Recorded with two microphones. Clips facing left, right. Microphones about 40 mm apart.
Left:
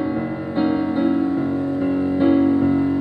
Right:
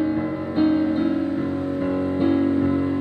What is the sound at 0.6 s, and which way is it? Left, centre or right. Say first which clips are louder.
Music: even; centre.